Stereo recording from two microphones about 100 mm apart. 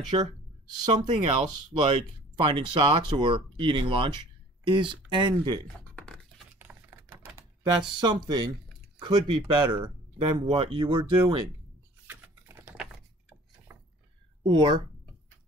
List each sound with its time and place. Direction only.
0.1 s speech: 60° right (ahead or behind)
0.8 s speech: 45° right (ahead or behind)
1.2 s speech: 65° right (ahead or behind); by 5.6 s 50° right (ahead or behind)
5.9 s a sound: 5° left (ahead or behind)
6.6 s typing: 20° right (ahead or behind)
8.0 s speech: 45° right (ahead or behind); by 10.9 s 60° right (ahead or behind)
10.9 s speech: 50° right (ahead or behind)
12.1 s computer keyboard: 20° right (ahead or behind)
13.7 s a sound: 20° right (ahead or behind)
14.4 s speech: 50° right (ahead or behind)